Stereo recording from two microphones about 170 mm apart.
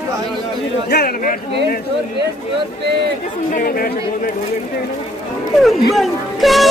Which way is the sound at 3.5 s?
60° left (ahead or behind).